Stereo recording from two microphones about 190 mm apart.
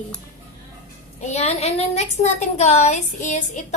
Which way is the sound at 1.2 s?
35° left (ahead or behind).